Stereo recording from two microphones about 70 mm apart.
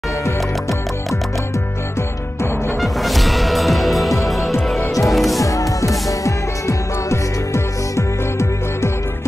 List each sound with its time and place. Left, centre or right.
2.8 s music: centre
5.4 s music: left